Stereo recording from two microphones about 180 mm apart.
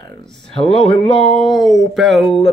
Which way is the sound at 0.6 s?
30° left (ahead or behind).